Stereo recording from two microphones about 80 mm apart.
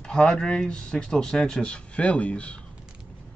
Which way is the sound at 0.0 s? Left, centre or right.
Centre.